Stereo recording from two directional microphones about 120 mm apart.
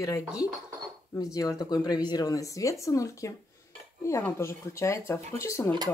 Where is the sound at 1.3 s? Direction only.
30° left (ahead or behind).